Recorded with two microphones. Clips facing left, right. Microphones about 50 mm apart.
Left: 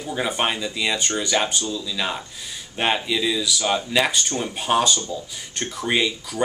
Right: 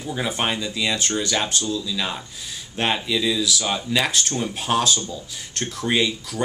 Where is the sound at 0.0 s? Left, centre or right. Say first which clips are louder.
Left 1 dB; centre.